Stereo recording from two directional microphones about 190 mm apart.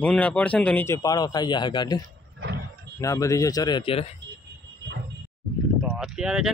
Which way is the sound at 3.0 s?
15° left (ahead or behind).